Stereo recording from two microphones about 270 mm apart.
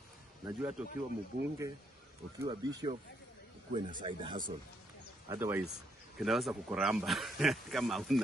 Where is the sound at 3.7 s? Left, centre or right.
Centre.